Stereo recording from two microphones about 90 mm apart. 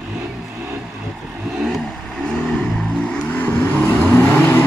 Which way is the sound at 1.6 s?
5° left (ahead or behind).